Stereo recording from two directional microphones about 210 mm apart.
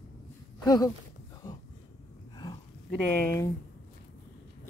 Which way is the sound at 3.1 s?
10° left (ahead or behind).